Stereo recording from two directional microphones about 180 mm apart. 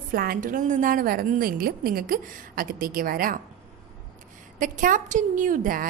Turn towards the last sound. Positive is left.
turn(degrees=-50)  # may be behind; listen again after turning